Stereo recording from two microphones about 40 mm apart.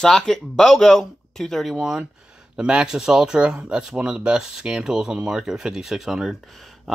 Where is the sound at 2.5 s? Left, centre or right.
Centre.